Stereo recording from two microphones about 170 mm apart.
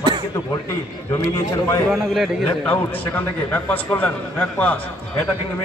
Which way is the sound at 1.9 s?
Centre (ahead or behind).